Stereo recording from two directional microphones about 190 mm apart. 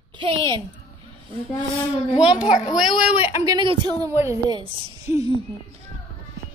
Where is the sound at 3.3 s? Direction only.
20° right (ahead or behind).